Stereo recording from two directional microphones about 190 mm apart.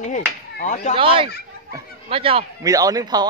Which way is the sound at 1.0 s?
30° right (ahead or behind).